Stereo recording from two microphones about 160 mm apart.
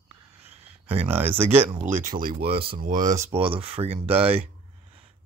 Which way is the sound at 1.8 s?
55° right (ahead or behind).